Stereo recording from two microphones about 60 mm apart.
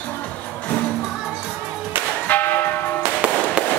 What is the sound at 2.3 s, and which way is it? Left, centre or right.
Church bell, left.